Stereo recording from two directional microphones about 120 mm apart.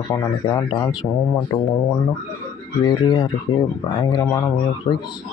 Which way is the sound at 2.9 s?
35° left (ahead or behind).